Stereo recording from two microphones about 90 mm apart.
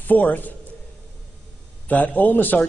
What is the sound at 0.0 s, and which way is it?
Speech, 20° left (ahead or behind).